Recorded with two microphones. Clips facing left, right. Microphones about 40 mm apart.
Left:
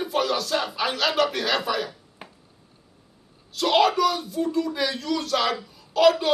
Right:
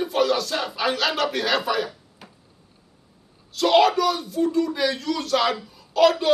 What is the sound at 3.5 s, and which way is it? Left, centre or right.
Speech, centre.